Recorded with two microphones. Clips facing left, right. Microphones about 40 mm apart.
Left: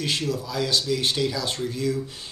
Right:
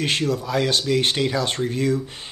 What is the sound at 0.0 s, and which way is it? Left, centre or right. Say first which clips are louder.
Speech: right 4 dB; right.